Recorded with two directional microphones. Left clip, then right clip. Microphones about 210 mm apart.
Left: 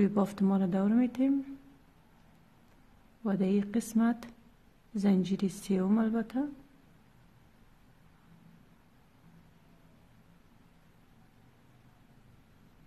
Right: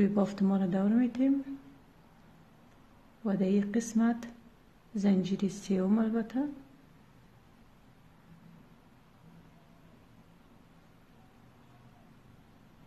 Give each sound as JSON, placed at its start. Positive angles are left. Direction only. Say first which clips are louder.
{"t": 0.0, "sound": "a woman's voice", "louder": "even", "side_deg": 25}
{"t": 3.3, "sound": "a woman's voice", "louder": "right 1 dB", "side_deg": 20}